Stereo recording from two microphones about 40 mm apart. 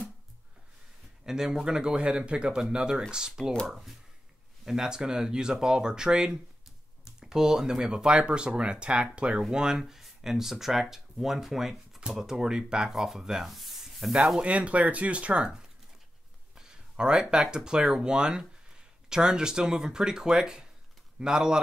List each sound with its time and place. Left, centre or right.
1.2 s speech: centre
8.1 s speech: right
9.5 s speech: centre
12.4 s speech: centre
13.5 s speech: centre
14.4 s speech: right
16.9 s speech: centre